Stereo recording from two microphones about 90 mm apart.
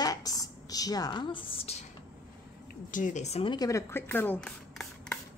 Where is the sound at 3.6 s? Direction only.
35° left (ahead or behind).